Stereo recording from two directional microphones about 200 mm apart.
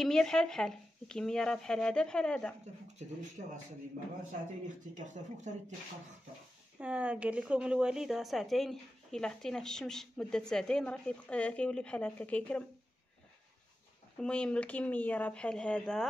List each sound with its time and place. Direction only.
0.0 s a woman's voice: 5° left (ahead or behind)
3.4 s speech: 40° right (ahead or behind)
6.8 s a woman's voice: 5° right (ahead or behind)
14.2 s a woman's voice: 5° left (ahead or behind)